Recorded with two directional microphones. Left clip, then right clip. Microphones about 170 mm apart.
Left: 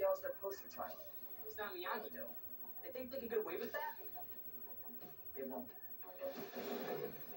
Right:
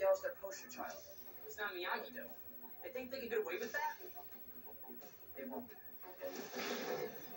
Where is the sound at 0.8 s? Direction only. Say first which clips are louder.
Right 1 dB; 35° left (ahead or behind).